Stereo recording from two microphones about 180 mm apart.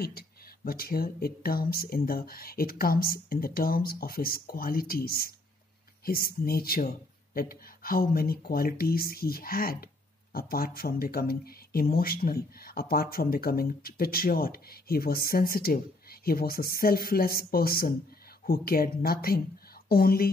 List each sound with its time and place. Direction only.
0.0 s speech: 60° left (ahead or behind)